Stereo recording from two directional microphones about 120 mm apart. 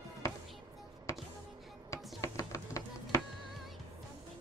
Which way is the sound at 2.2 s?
25° left (ahead or behind).